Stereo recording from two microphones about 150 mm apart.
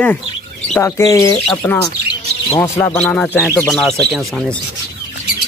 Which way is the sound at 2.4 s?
20° left (ahead or behind).